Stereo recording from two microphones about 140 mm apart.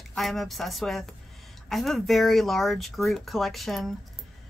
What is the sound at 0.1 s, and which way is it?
Speech, centre (ahead or behind).